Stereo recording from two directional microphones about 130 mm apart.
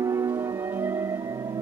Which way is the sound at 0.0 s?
20° right (ahead or behind).